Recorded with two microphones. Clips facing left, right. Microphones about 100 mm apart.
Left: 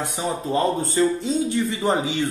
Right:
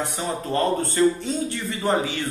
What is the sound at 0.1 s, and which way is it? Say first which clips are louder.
A man's voice: left 2 dB; 20° left (ahead or behind).